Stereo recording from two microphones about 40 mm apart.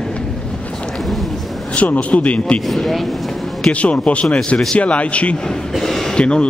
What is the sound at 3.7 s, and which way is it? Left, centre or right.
A man's voice, left.